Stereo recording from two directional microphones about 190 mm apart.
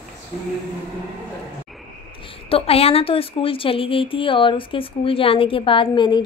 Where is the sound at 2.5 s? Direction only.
30° left (ahead or behind).